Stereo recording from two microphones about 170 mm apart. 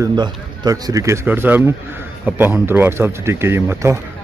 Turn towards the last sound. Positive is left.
turn(degrees=-15)  # may be behind; listen again after turning